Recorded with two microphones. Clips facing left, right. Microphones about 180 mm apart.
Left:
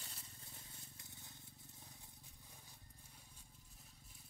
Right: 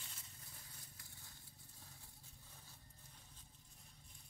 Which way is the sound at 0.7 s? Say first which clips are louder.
Left 2 dB; 25° left (ahead or behind).